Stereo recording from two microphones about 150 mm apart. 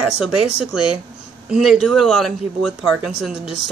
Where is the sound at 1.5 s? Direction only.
Centre (ahead or behind).